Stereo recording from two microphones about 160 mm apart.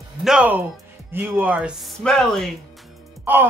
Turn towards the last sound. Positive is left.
turn(degrees=-10)  # may be behind; listen again after turning